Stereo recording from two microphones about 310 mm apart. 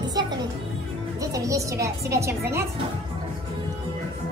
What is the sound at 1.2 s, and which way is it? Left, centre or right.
A woman's voice, centre.